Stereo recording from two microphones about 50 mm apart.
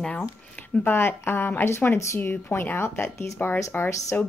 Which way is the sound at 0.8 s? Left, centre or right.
Left.